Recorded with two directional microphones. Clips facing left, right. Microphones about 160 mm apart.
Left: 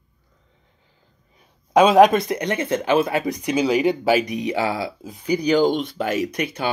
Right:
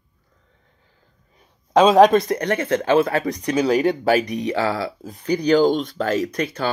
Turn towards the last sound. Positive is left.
turn(degrees=15)  # may be behind; listen again after turning